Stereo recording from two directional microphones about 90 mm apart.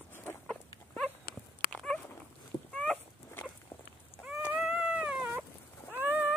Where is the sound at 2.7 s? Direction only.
15° left (ahead or behind).